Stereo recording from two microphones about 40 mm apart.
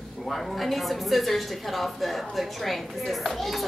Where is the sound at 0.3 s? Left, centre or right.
Centre.